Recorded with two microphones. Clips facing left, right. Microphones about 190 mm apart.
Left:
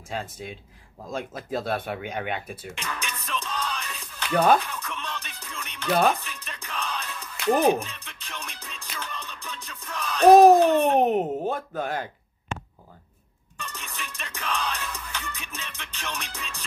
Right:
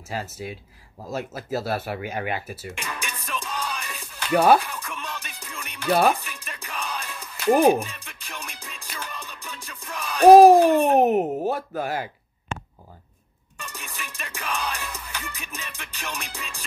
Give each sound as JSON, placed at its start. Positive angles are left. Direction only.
{"t": 0.1, "sound": "speech", "side_deg": -5}
{"t": 6.2, "sound": "music", "side_deg": -10}
{"t": 13.8, "sound": "music", "side_deg": 0}